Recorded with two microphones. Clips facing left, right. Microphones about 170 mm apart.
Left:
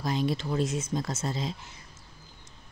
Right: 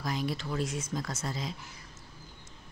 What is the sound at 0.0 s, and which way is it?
Speech, 25° left (ahead or behind).